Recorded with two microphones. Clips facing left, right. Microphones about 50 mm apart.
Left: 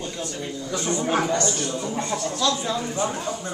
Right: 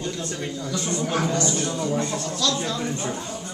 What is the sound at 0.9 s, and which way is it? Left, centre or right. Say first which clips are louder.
Speech: left 2 dB; left.